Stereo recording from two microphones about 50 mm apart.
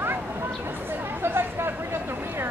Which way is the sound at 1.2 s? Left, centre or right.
Right.